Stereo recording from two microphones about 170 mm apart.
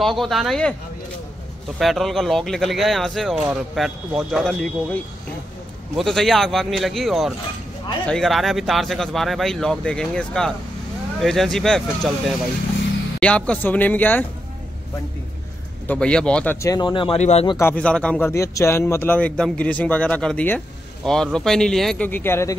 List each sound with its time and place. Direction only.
0.0 s speech: centre (ahead or behind)
1.8 s a man's voice: centre (ahead or behind)
15.9 s speech: 5° left (ahead or behind)
16.6 s speech: 25° left (ahead or behind)
17.2 s speech: 40° left (ahead or behind)
17.6 s a man's voice: 10° left (ahead or behind)
18.3 s a man's voice: 20° left (ahead or behind)